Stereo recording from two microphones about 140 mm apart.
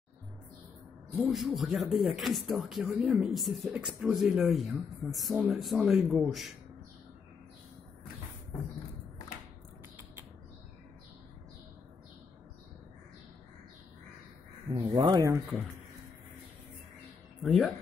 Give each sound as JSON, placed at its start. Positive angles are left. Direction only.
{"t": 1.1, "sound": "speech", "side_deg": -5}
{"t": 14.8, "sound": "speech", "side_deg": -35}
{"t": 15.2, "sound": "speech", "side_deg": -20}
{"t": 17.4, "sound": "speech", "side_deg": 0}